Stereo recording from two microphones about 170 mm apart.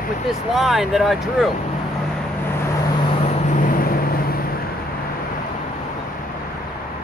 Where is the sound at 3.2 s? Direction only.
40° left (ahead or behind); by 4.7 s 60° left (ahead or behind).